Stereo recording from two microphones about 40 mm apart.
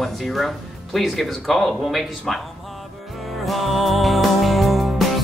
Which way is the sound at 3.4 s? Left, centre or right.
Centre.